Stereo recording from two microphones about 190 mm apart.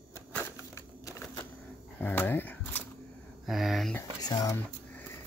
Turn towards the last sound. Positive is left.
turn(degrees=15)  # may be behind; listen again after turning